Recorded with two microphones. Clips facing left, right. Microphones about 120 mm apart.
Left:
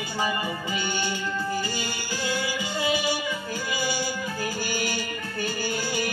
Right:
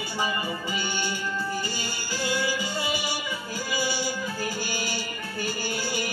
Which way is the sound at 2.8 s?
50° left (ahead or behind).